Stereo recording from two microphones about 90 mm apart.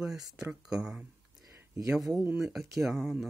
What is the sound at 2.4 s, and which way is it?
Speech, 5° right (ahead or behind).